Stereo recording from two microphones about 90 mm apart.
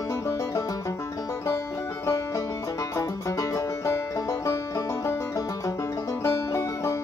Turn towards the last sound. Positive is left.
turn(degrees=35)  # may be behind; listen again after turning